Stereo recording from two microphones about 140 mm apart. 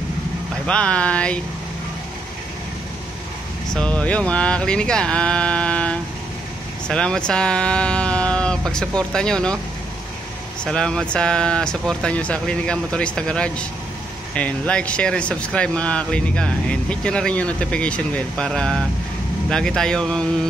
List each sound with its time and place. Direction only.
0.7 s speech: 10° left (ahead or behind)
3.7 s speech: 10° left (ahead or behind)
10.6 s speech: 5° left (ahead or behind)